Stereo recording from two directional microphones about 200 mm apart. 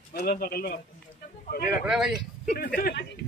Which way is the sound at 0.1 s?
50° left (ahead or behind).